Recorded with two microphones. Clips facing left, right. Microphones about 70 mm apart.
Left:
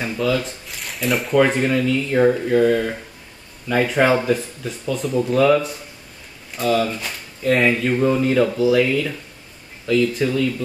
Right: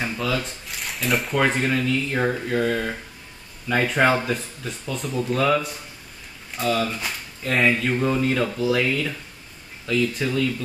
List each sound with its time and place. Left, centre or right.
0.0 s speech: centre
6.6 s speech: centre